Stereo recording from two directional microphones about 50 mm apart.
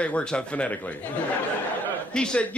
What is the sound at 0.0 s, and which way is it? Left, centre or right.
Speech, left.